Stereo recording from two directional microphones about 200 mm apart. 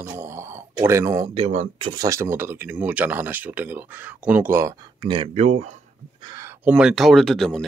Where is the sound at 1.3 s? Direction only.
30° right (ahead or behind).